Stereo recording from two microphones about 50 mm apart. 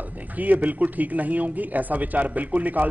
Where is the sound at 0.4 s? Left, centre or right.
Right.